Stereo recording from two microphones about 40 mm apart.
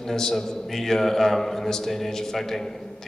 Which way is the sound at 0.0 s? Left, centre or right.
Centre.